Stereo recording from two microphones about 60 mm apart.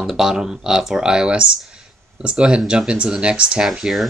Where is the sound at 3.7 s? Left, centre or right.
Centre.